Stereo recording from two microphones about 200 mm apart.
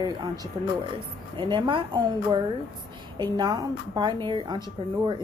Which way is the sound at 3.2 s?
20° right (ahead or behind).